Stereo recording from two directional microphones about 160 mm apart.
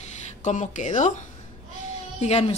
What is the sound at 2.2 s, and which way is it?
Speech, 40° left (ahead or behind).